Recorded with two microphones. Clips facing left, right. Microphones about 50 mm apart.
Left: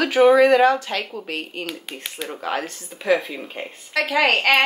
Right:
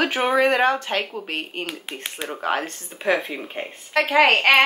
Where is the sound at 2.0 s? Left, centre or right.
Right.